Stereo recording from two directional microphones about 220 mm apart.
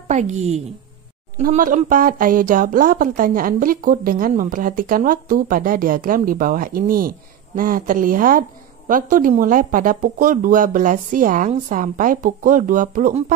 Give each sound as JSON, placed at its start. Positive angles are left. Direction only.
{"t": 0.1, "sound": "speech", "side_deg": -30}